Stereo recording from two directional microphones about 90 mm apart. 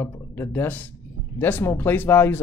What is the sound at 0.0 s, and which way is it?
Speech, 20° left (ahead or behind).